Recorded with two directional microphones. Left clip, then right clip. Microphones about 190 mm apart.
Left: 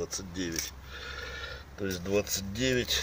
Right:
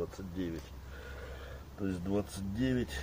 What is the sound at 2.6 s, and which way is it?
Speech, 25° left (ahead or behind).